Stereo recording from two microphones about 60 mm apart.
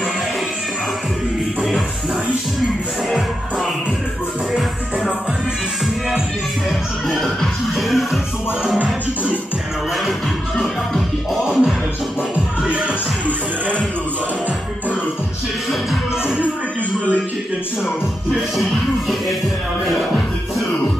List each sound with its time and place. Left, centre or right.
7.7 s music: centre
8.7 s music: right
10.6 s music: centre
11.4 s music: centre
12.6 s music: centre